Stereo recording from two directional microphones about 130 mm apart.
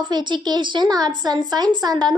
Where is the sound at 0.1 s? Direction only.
35° right (ahead or behind).